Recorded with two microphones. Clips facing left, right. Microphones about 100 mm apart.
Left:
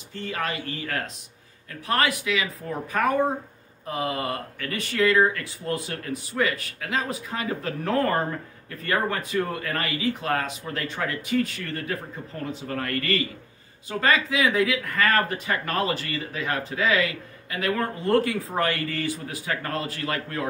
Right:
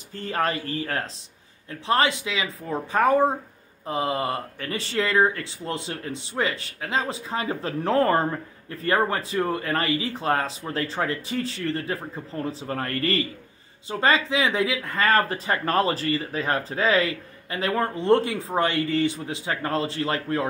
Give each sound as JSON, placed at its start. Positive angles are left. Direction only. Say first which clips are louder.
{"t": 0.1, "sound": "speech", "louder": "right 4 dB", "side_deg": -40}